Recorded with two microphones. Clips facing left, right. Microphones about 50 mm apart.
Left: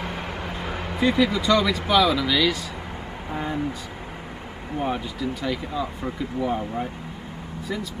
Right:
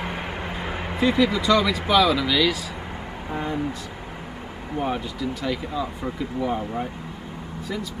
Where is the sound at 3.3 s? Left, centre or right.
Centre.